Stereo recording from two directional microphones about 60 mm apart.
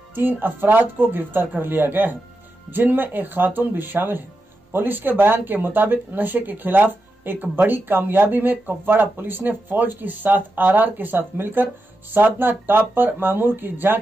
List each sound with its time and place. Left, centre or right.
0.1 s speech: right